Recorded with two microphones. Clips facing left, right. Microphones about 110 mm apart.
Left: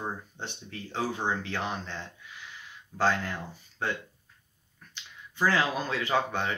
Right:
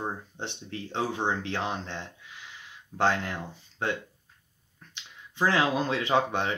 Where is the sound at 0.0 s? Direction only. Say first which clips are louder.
Right 2 dB; 25° right (ahead or behind).